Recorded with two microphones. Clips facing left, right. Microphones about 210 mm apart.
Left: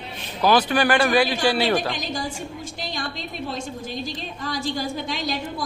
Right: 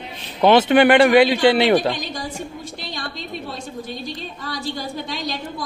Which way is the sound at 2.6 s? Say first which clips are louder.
Left 1 dB; 45° left (ahead or behind).